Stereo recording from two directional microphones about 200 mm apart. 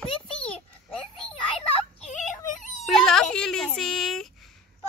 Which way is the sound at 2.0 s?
35° left (ahead or behind).